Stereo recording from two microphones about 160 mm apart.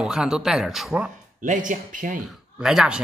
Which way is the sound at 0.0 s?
5° right (ahead or behind).